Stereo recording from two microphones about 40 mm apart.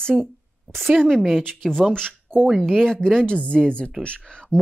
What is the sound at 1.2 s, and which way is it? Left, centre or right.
Speech, centre.